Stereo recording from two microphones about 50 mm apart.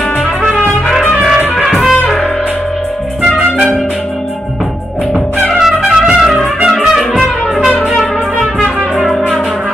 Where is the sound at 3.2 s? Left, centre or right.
Right.